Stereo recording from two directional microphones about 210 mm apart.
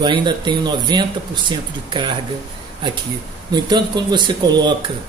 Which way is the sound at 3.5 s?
20° right (ahead or behind).